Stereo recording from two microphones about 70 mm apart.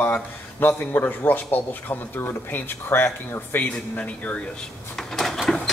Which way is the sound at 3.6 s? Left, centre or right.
Centre.